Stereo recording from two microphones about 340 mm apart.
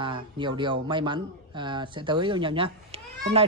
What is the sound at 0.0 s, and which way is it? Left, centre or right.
Speech, centre.